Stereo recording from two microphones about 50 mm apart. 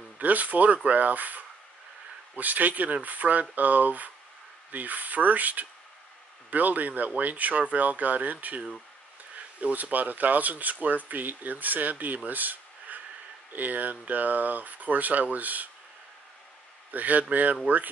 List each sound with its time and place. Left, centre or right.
0.2 s speech: right
16.9 s speech: right